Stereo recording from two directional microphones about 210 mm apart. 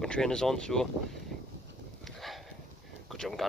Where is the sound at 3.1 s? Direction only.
Centre (ahead or behind).